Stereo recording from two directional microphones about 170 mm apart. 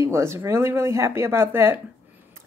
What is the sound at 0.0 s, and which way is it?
Speech, 15° right (ahead or behind).